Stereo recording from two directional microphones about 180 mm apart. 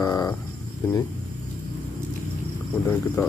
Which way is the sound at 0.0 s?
20° left (ahead or behind).